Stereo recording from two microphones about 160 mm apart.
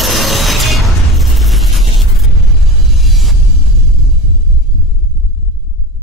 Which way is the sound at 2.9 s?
Centre (ahead or behind).